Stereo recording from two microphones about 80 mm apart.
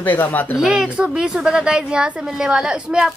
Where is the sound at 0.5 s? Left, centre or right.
Centre.